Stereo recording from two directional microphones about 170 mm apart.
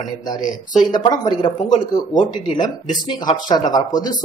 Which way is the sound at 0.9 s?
25° left (ahead or behind).